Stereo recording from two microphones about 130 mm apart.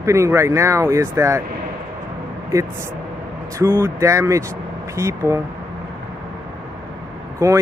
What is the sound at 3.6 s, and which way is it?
Speech, 20° right (ahead or behind).